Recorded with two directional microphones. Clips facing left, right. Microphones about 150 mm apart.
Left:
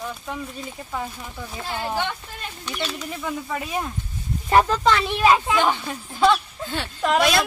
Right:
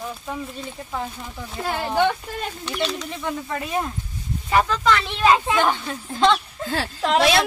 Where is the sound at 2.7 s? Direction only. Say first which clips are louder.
Right 2 dB; 5° left (ahead or behind).